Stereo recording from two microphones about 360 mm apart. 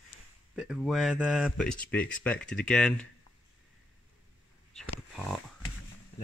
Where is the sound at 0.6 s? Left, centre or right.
Centre.